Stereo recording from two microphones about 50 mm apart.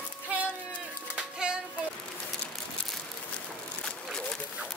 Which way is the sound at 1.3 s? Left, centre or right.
Centre.